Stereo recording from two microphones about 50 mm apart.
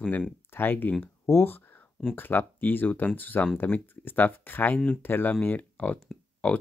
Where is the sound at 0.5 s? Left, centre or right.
Left.